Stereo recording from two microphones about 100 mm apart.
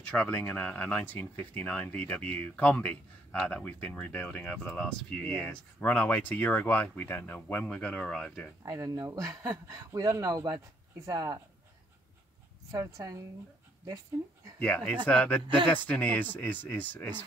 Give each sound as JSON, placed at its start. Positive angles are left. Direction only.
{"t": 0.0, "sound": "speech", "side_deg": 10}
{"t": 8.6, "sound": "speech", "side_deg": -35}
{"t": 12.7, "sound": "speech", "side_deg": -35}
{"t": 14.6, "sound": "speech", "side_deg": 10}